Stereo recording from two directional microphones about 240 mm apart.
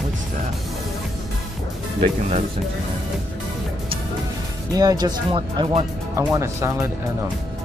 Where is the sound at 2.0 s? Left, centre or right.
Right.